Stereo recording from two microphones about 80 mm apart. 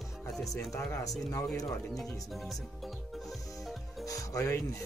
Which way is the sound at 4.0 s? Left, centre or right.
Left.